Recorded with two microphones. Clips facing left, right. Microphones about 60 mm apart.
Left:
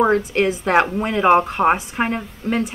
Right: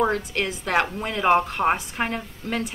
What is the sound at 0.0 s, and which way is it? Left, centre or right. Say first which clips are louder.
A woman's voice: left 7 dB; left.